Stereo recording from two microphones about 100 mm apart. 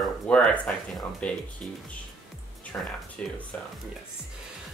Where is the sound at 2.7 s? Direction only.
20° left (ahead or behind).